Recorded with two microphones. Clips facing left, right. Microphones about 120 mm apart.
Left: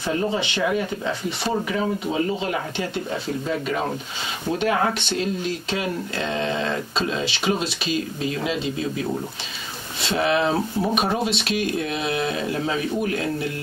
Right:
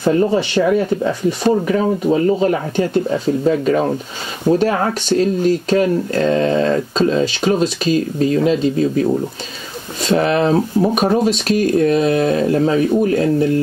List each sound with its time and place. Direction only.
0.0 s speech: 50° right (ahead or behind)
10.0 s speech: 45° right (ahead or behind)